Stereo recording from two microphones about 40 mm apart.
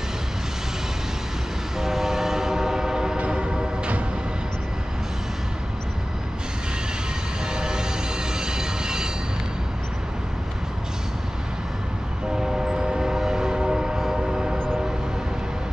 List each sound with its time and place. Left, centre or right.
1.8 s train: centre
7.5 s music: centre
8.4 s a sound: centre
12.4 s train: centre